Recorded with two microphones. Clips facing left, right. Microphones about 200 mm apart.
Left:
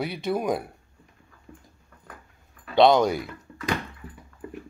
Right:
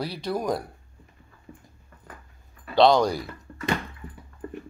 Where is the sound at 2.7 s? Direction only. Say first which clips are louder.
Left 1 dB; 20° left (ahead or behind).